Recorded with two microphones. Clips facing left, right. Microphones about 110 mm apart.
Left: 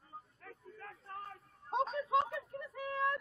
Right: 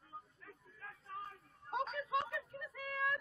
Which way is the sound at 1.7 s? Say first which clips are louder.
Left 5 dB; 30° left (ahead or behind).